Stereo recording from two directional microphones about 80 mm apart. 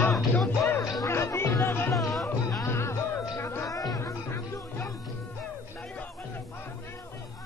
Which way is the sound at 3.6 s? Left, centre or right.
Left.